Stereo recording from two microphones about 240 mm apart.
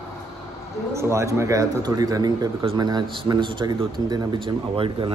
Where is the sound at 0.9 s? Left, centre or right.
Centre.